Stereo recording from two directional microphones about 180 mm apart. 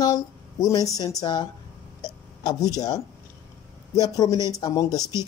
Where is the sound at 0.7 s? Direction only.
20° left (ahead or behind).